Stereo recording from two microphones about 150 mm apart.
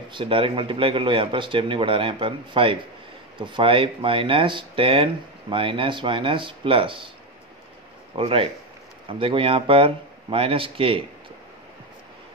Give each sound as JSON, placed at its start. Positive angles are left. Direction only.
{"t": 0.1, "sound": "speech", "side_deg": -35}
{"t": 8.2, "sound": "speech", "side_deg": -40}